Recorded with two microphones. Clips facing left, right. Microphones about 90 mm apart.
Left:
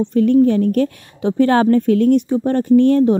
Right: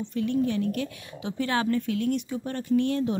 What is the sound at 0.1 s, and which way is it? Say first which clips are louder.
A woman's voice: left 13 dB; 45° left (ahead or behind).